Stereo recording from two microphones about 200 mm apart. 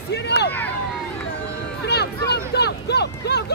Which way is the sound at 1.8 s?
55° left (ahead or behind).